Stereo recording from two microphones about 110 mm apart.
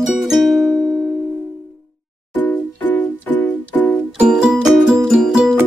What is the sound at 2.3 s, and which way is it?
Music, 15° left (ahead or behind).